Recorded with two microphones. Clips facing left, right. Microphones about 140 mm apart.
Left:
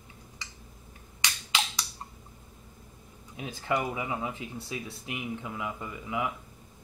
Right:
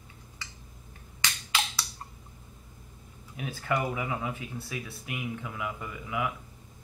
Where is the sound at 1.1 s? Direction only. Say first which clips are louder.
Even; 20° left (ahead or behind).